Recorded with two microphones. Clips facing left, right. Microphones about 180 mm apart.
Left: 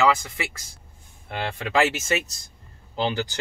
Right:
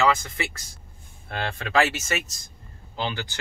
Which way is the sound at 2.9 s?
35° left (ahead or behind).